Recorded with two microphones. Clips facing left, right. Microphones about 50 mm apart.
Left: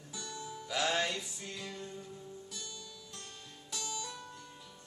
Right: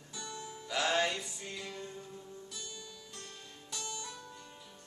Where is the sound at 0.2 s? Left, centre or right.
Centre.